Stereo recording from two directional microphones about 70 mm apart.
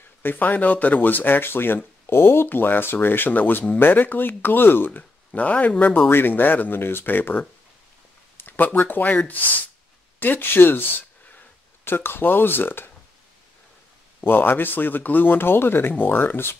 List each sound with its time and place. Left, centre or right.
0.2 s speech: left
14.2 s speech: left